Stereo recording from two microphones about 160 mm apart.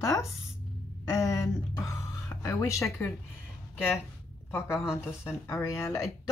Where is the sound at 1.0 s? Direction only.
20° left (ahead or behind).